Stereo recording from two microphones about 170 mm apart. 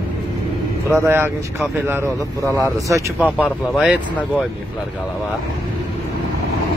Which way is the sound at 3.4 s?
5° right (ahead or behind).